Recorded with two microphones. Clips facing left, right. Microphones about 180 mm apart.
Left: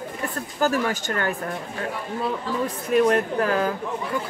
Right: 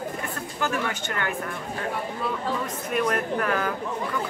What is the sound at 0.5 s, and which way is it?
Speech, 35° left (ahead or behind).